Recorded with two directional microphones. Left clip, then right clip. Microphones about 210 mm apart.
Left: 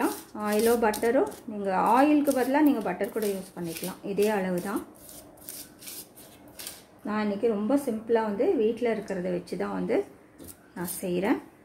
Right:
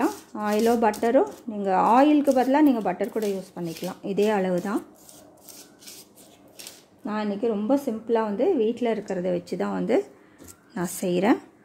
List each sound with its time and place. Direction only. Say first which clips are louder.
0.3 s a woman's voice: right 1 dB; 40° right (ahead or behind)
7.1 s a woman's voice: right 1 dB; 40° right (ahead or behind)